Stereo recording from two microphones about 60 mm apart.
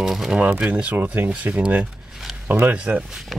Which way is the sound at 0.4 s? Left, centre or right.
Right.